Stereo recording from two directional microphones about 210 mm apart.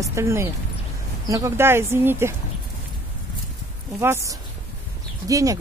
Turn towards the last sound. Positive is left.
turn(degrees=-15)  # may be behind; listen again after turning